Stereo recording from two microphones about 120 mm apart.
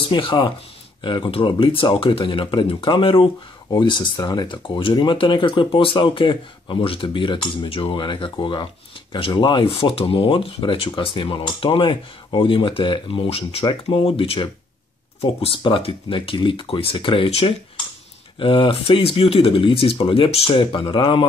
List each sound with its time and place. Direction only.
0.1 s speech: 40° left (ahead or behind)
13.7 s speech: 40° left (ahead or behind)
14.0 s speech: 50° left (ahead or behind)